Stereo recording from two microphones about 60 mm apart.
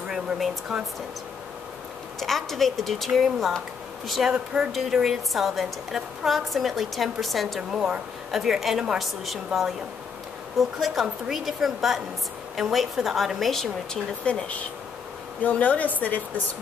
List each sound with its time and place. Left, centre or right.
0.1 s speech: centre
2.1 s a woman's voice: centre
7.7 s a woman's voice: centre
10.8 s a woman's voice: centre
14.2 s a woman's voice: left